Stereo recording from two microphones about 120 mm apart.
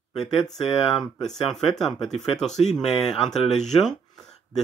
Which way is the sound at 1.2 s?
5° left (ahead or behind).